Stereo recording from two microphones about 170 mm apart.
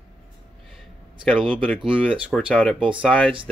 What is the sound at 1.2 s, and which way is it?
Speech, 5° left (ahead or behind).